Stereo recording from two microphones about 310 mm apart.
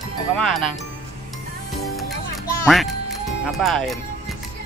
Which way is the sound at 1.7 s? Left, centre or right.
Centre.